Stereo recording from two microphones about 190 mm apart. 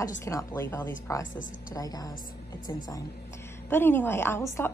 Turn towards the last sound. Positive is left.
turn(degrees=10)  # may be behind; listen again after turning